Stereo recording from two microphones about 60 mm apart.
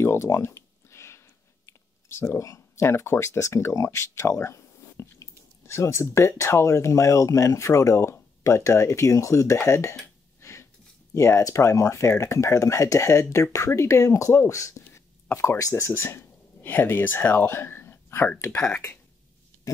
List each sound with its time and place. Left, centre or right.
0.0 s a sound: left
1.7 s chewing: left
2.4 s speech: left
10.4 s a sound: left
11.1 s speech: left
15.7 s speech: left